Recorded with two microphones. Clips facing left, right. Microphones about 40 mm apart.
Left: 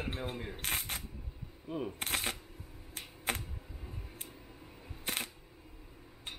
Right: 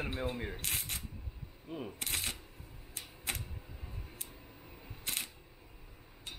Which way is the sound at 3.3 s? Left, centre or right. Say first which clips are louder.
Left 4 dB; left.